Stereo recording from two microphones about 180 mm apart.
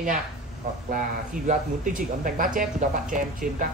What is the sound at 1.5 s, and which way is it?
Speech, 50° right (ahead or behind).